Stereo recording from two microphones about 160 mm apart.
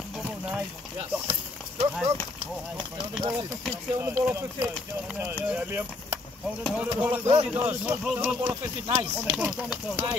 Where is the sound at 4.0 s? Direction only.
15° right (ahead or behind).